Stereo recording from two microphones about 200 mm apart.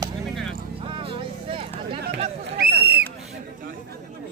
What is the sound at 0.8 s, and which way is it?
Vehicle, 25° right (ahead or behind).